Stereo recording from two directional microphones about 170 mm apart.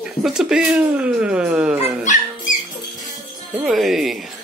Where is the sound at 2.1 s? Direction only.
45° left (ahead or behind).